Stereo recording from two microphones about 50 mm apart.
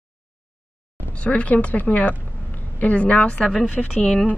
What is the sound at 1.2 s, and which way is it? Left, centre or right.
A woman's voice, left.